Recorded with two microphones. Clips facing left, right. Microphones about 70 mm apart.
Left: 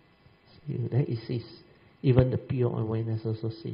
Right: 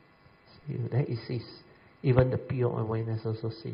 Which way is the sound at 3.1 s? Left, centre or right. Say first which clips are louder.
Left 1 dB; right.